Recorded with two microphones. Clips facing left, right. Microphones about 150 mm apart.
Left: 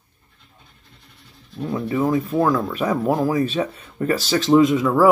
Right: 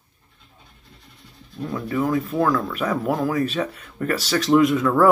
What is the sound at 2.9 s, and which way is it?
Speech, centre (ahead or behind).